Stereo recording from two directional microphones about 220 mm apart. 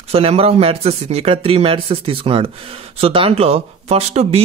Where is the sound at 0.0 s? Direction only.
25° right (ahead or behind).